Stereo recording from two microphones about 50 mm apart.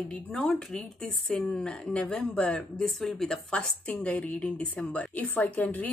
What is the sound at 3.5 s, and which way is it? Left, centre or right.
A woman's voice, left.